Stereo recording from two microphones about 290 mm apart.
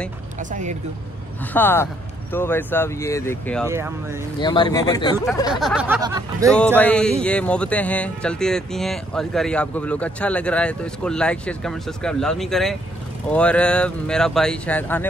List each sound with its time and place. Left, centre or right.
0.4 s speech: right
1.5 s speech: centre
3.6 s speech: centre
4.4 s speech: centre
5.5 s speech: centre
6.5 s speech: centre